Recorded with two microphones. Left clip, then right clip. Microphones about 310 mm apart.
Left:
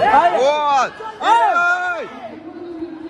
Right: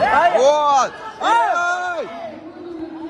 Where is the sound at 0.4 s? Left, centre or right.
Centre.